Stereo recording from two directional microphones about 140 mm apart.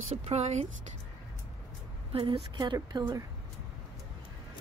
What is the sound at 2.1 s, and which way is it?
Speech, 40° right (ahead or behind).